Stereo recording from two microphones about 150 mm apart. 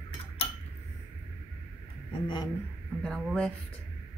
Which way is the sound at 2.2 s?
30° left (ahead or behind).